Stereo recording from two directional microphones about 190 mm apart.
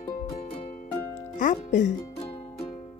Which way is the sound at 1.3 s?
40° left (ahead or behind).